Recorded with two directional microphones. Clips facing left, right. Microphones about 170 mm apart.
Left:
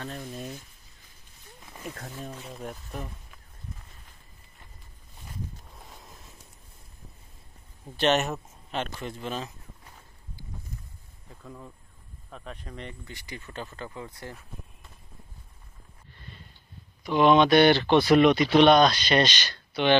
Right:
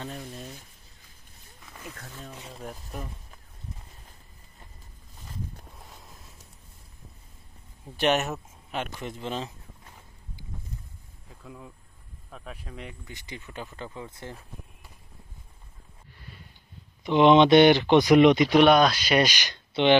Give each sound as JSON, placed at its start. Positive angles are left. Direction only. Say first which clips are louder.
{"t": 2.5, "sound": "speech", "louder": "right 1 dB", "side_deg": 0}
{"t": 5.9, "sound": "a sound", "louder": "left 1 dB", "side_deg": 0}
{"t": 7.8, "sound": "speech", "louder": "even", "side_deg": -5}
{"t": 8.8, "sound": "a man's voice", "louder": "even", "side_deg": -20}
{"t": 11.2, "sound": "a sound", "louder": "left 1 dB", "side_deg": -5}
{"t": 12.3, "sound": "speech", "louder": "left 1 dB", "side_deg": -5}
{"t": 13.1, "sound": "a man's voice", "louder": "even", "side_deg": -20}
{"t": 17.0, "sound": "a man's voice", "louder": "right 2 dB", "side_deg": -20}
{"t": 18.6, "sound": "speech", "louder": "left 3 dB", "side_deg": -5}